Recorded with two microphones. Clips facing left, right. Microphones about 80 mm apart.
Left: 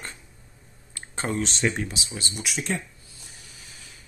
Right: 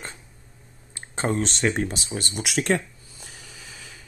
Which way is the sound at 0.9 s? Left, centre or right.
Right.